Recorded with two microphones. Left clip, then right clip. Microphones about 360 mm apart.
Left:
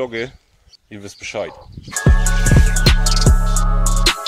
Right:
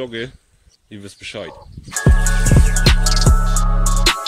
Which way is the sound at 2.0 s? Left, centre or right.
Centre.